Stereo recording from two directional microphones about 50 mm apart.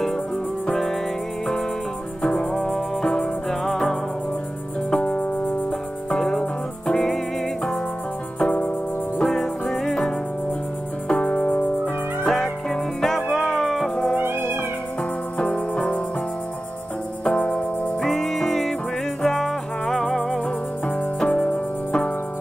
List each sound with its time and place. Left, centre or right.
0.7 s music: centre
2.2 s music: centre
4.9 s music: left
6.1 s music: centre
8.4 s music: left
9.2 s music: centre
11.1 s music: centre
11.3 s music: left
12.3 s music: centre
15.3 s music: left
17.2 s music: left
18.0 s music: centre
21.3 s music: left